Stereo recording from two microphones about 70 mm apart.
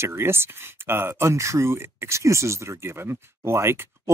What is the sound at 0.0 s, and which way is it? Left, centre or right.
Speech, right.